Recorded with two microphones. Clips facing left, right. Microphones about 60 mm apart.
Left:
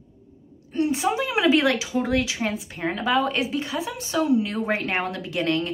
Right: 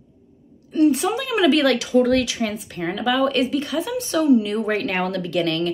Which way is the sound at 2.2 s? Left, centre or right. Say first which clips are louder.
Right 2 dB; left.